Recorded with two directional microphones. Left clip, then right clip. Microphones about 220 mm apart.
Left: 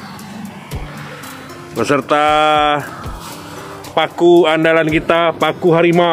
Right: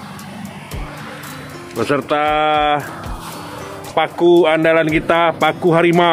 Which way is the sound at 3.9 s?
10° left (ahead or behind).